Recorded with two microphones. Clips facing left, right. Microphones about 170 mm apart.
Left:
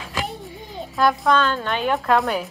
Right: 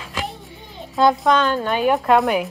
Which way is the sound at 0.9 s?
20° right (ahead or behind).